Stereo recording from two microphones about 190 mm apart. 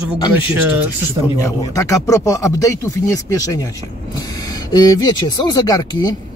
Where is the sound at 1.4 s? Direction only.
15° left (ahead or behind).